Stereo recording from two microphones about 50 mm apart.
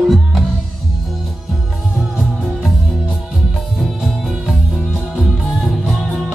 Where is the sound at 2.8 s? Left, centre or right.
Centre.